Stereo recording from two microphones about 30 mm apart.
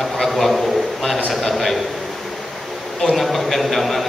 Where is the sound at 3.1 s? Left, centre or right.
Centre.